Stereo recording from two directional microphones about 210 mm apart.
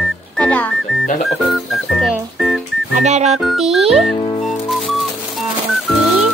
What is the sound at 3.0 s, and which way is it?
Speech, 30° right (ahead or behind).